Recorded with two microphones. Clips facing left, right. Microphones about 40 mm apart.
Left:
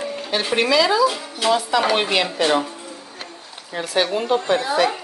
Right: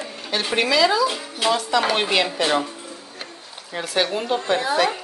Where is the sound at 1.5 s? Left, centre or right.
Centre.